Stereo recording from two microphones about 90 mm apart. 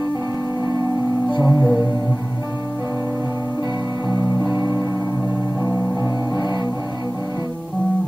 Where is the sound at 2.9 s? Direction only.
30° right (ahead or behind).